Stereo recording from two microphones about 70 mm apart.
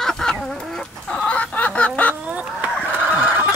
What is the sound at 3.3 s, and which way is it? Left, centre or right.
Fowl, centre.